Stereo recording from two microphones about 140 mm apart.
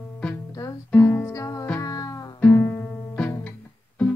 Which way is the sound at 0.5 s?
25° left (ahead or behind).